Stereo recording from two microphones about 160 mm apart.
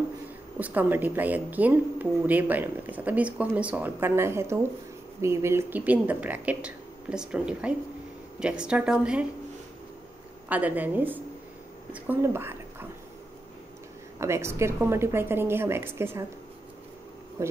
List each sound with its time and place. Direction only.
0.6 s a woman's voice: 10° right (ahead or behind)
10.5 s a woman's voice: 10° right (ahead or behind)
14.1 s a woman's voice: 15° right (ahead or behind)
17.4 s a woman's voice: 15° right (ahead or behind)